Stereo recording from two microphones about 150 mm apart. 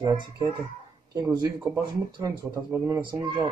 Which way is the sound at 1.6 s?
20° right (ahead or behind).